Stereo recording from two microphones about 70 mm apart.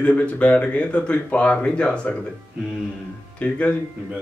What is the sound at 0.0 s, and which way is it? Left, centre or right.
Speech, centre.